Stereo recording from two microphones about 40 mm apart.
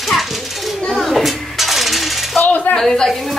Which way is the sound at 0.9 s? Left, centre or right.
Centre.